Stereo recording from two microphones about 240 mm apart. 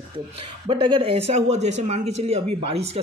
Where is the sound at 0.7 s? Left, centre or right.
Right.